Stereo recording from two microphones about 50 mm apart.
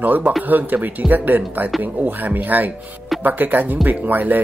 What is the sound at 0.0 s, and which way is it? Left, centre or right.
Speech, right.